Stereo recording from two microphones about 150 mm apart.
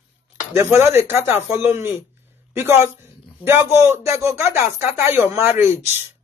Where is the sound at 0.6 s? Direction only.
15° right (ahead or behind).